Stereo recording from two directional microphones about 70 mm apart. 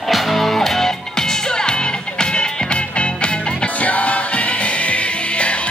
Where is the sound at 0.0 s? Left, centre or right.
Centre.